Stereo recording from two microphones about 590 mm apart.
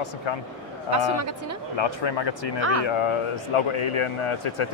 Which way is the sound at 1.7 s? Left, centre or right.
Left.